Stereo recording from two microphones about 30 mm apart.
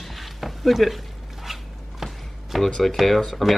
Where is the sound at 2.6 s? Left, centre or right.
Centre.